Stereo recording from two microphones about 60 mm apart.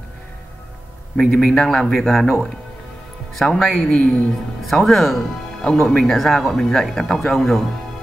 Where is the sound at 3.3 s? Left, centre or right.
Centre.